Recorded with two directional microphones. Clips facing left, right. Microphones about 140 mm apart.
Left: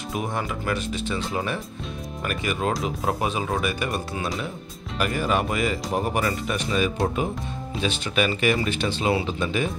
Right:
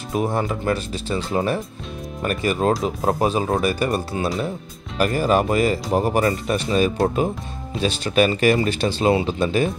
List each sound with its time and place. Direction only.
0.1 s speech: 35° right (ahead or behind)